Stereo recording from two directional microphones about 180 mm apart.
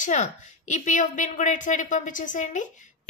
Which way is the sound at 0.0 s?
40° left (ahead or behind).